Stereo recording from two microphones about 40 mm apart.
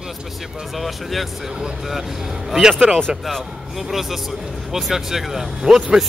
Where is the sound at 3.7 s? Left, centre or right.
Centre.